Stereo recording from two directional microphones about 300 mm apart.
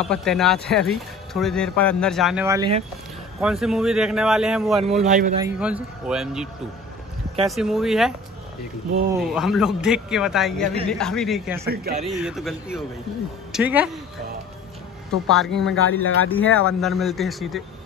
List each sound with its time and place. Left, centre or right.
0.0 s speech: centre
3.3 s speech: centre
5.0 s a man's voice: right
5.4 s speech: centre
9.2 s speech: centre
11.7 s a man's voice: right
12.2 s speech: centre
15.2 s speech: centre
15.7 s speech: left
16.3 s speech: centre